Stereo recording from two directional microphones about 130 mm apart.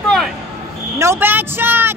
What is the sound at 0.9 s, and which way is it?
Vehicle, 20° right (ahead or behind).